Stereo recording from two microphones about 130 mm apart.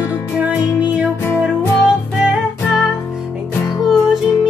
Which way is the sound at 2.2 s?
Centre (ahead or behind).